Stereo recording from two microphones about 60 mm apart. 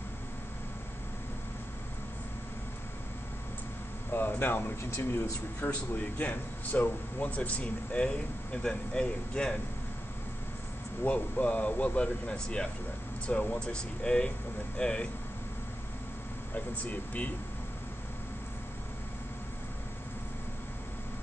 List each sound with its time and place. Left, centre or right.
4.1 s speech: left; by 9.6 s centre
11.1 s speech: left
16.5 s speech: left